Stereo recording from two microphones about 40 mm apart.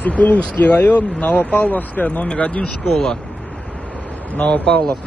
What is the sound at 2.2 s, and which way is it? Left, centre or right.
Speech, left.